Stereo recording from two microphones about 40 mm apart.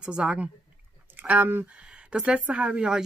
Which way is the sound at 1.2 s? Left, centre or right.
Right.